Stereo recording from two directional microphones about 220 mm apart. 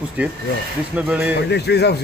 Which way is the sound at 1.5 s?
50° left (ahead or behind).